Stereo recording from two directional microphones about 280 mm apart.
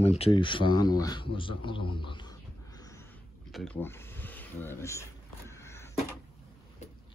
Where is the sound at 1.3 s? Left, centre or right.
Centre.